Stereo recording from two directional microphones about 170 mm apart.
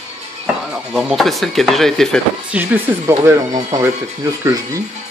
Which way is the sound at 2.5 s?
10° right (ahead or behind).